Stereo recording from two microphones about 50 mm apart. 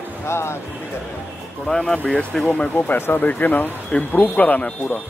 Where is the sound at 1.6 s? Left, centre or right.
Centre.